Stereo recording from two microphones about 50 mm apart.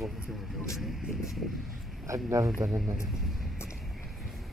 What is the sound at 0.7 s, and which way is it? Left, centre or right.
Vehicle, centre.